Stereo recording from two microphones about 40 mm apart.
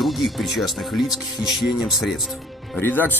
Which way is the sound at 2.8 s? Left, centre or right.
Left.